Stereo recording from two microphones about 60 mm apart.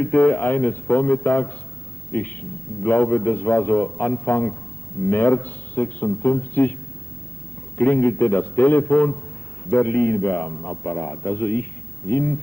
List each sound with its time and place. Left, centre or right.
0.0 s a man's voice: left